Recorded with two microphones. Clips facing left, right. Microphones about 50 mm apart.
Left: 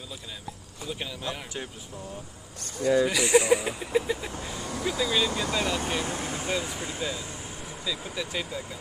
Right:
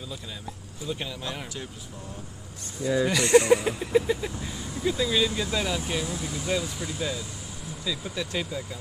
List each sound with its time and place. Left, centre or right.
0.8 s speech: centre
3.0 s speech: centre
4.3 s speech: left
4.6 s speech: left
4.8 s speech: centre
5.9 s speech: left
7.8 s speech: centre